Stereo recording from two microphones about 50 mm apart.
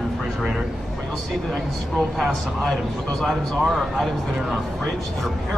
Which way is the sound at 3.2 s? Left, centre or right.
Centre.